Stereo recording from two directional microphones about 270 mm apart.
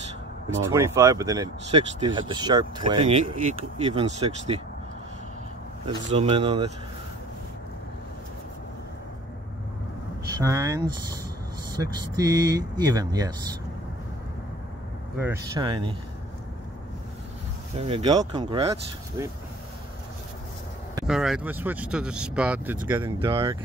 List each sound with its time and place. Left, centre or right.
0.5 s speech: centre
5.9 s speech: right
10.4 s speech: centre
15.1 s speech: centre
17.7 s speech: right
21.0 s speech: centre
23.1 s speech: centre